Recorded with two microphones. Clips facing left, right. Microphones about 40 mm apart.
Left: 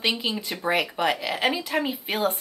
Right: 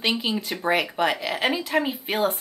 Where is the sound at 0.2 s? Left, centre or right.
Centre.